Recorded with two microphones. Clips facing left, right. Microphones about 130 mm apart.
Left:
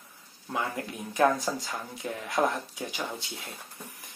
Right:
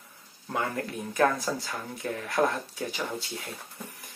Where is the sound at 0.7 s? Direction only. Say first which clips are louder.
Even; 15° left (ahead or behind).